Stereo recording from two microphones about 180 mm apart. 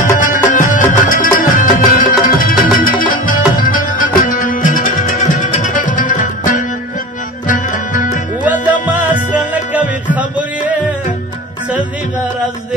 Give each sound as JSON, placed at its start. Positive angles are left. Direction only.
{"t": 0.0, "sound": "music", "side_deg": 45}
{"t": 9.3, "sound": "music", "side_deg": -10}